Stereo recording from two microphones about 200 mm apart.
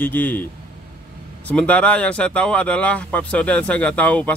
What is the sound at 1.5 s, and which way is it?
Speech, 5° left (ahead or behind).